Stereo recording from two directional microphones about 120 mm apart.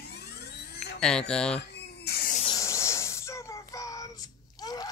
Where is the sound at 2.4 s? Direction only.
30° left (ahead or behind).